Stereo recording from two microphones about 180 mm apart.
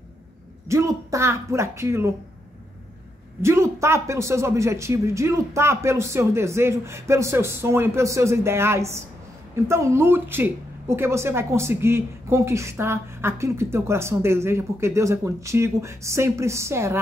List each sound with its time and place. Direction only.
0.7 s speech: 15° right (ahead or behind)
3.4 s speech: 15° right (ahead or behind)